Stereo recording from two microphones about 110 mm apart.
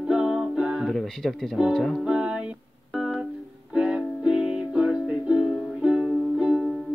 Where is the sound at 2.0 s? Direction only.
10° right (ahead or behind).